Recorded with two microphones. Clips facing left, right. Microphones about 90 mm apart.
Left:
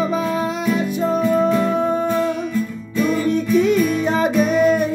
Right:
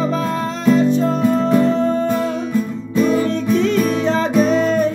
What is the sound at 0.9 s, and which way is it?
Music, 10° left (ahead or behind).